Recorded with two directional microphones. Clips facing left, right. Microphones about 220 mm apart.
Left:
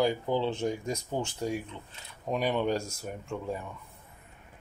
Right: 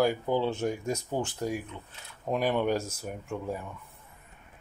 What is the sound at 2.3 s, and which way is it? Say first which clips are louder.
Speech: right 1 dB; 10° right (ahead or behind).